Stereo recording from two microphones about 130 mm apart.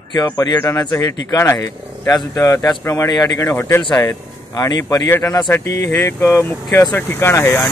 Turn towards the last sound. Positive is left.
turn(degrees=20)  # may be behind; listen again after turning